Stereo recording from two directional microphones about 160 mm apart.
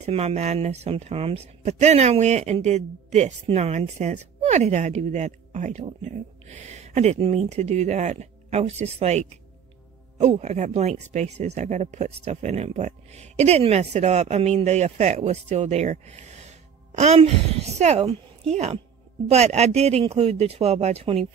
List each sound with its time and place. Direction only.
0.0 s speech: 40° right (ahead or behind)